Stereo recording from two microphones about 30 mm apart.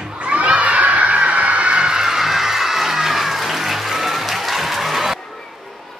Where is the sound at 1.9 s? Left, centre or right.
Centre.